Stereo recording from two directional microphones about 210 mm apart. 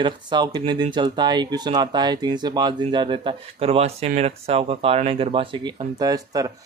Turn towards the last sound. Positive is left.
turn(degrees=-15)  # may be behind; listen again after turning